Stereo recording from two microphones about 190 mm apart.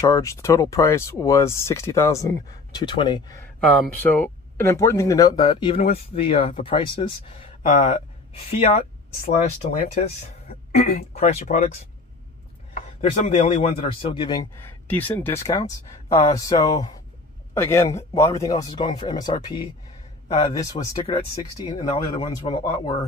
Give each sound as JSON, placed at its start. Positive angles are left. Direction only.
{"t": 0.0, "sound": "speech", "side_deg": 15}
{"t": 4.0, "sound": "speech", "side_deg": 10}
{"t": 10.5, "sound": "speech", "side_deg": 40}
{"t": 13.0, "sound": "speech", "side_deg": 35}